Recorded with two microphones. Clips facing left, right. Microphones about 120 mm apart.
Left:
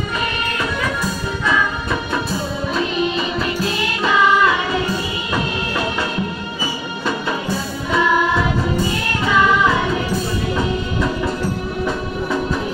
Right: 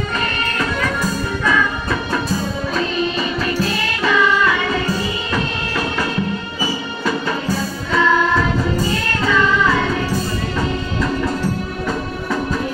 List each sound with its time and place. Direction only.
7.9 s music: 15° left (ahead or behind)